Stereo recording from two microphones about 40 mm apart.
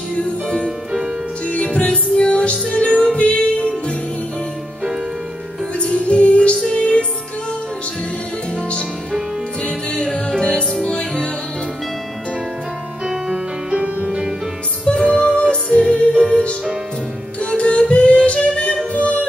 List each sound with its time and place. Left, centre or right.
0.2 s music: left
0.7 s music: centre
1.4 s music: left
5.8 s music: left
8.5 s music: left
13.3 s music: right
14.0 s music: right
15.1 s music: left
18.9 s yodeling: left